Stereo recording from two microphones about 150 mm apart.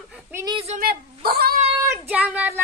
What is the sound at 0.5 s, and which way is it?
Speech, 45° right (ahead or behind).